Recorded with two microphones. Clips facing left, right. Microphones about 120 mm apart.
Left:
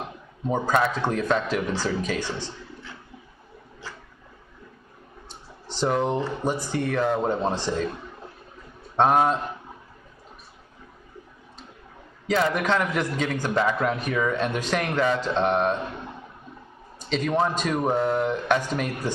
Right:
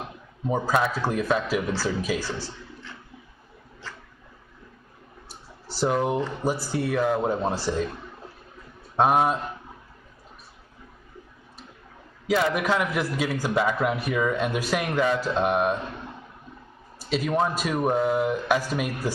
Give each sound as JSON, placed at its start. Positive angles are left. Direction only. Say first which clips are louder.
{"t": 0.5, "sound": "a man's voice", "louder": "left 1 dB", "side_deg": -5}
{"t": 5.3, "sound": "a sound", "louder": "left 1 dB", "side_deg": -10}
{"t": 6.4, "sound": "a man's voice", "louder": "even", "side_deg": -10}
{"t": 8.9, "sound": "a man's voice", "louder": "left 1 dB", "side_deg": -5}
{"t": 12.3, "sound": "a man's voice", "louder": "even", "side_deg": -5}
{"t": 17.0, "sound": "a man's voice", "louder": "left 1 dB", "side_deg": -5}